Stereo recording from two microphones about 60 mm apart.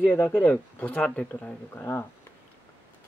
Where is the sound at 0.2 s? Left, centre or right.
Left.